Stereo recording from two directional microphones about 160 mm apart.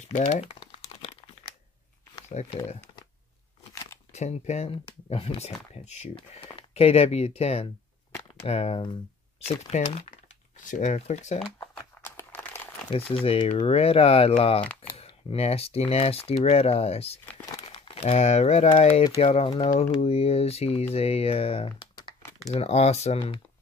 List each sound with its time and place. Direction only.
0.3 s crumpling: 40° left (ahead or behind)
2.5 s speech: 30° left (ahead or behind)
4.1 s speech: 45° left (ahead or behind)
10.6 s speech: 55° left (ahead or behind)
12.0 s crumpling: 15° left (ahead or behind)
12.9 s speech: 35° left (ahead or behind)
17.3 s crumpling: 15° left (ahead or behind)
17.6 s speech: 35° left (ahead or behind)
22.5 s speech: 40° left (ahead or behind)